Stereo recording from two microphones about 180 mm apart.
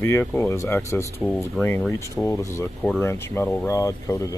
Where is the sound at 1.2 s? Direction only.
Centre (ahead or behind).